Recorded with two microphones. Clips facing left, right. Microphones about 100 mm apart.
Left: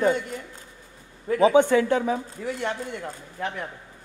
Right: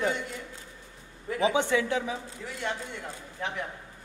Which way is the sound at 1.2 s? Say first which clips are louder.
Left 8 dB; 45° left (ahead or behind).